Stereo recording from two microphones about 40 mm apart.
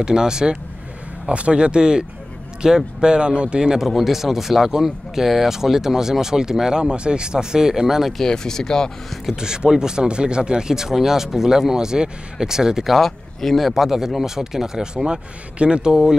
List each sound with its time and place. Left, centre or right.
0.0 s speech: centre
1.3 s speech: right
3.8 s speech: centre
8.2 s speech: centre
9.3 s speech: centre
12.8 s speech: centre; by 15.9 s right